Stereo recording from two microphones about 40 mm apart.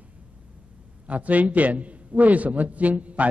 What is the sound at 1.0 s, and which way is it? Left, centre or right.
A man's voice, right.